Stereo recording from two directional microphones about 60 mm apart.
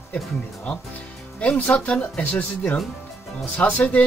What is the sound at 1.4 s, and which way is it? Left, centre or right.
Speech, left.